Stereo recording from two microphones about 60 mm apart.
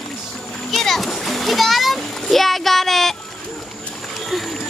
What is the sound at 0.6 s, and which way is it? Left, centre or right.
A child's voice, centre.